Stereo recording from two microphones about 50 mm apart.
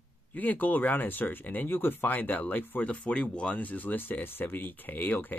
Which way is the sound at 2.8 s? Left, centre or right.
Left.